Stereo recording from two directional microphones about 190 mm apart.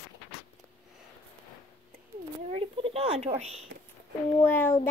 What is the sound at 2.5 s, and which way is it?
Speech, 30° right (ahead or behind).